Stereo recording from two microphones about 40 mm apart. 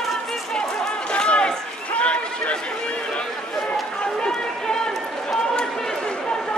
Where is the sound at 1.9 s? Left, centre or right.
Left; by 6.1 s centre.